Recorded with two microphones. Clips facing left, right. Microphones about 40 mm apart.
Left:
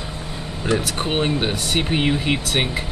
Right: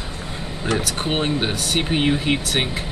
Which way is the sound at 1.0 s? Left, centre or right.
Centre.